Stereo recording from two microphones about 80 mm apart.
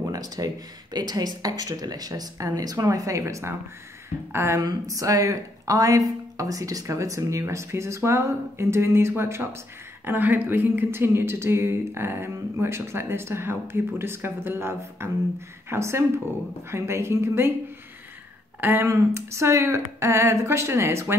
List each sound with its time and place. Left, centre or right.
0.1 s a woman's voice: right
4.6 s a woman's voice: right
18.6 s a woman's voice: right